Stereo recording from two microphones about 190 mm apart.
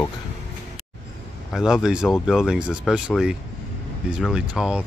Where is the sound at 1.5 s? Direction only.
Centre (ahead or behind).